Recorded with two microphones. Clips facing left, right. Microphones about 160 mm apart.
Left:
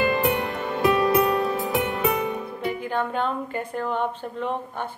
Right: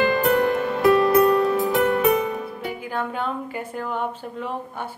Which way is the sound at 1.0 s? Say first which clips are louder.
Right 4 dB; 20° left (ahead or behind).